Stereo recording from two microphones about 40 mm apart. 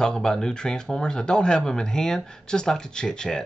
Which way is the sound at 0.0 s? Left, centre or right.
Centre.